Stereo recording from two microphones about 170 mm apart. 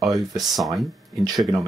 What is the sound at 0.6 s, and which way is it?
Speech, centre (ahead or behind).